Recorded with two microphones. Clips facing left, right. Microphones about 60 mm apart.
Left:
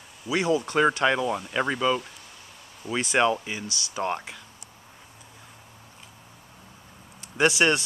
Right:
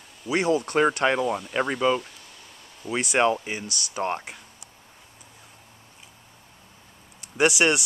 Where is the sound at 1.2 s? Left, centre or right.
Centre.